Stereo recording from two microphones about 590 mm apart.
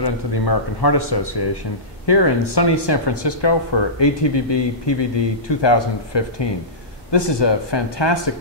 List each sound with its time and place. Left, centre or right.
0.0 s speech: left